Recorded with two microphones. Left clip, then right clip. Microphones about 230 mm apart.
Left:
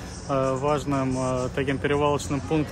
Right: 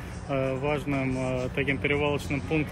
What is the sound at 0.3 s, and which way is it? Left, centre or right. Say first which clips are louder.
Speech: left 4 dB; centre.